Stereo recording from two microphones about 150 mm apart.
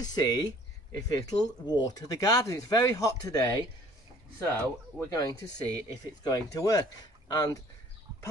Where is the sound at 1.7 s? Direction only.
25° left (ahead or behind).